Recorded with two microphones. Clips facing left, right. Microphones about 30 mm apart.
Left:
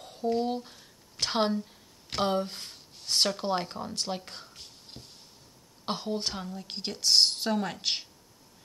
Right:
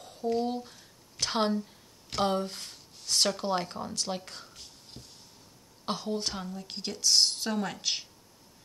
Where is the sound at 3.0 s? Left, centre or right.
Centre.